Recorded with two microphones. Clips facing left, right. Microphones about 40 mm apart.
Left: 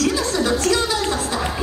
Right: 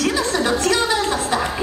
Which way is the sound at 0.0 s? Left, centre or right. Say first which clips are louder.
Even; right.